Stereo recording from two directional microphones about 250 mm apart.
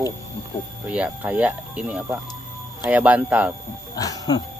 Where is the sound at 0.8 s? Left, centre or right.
Centre.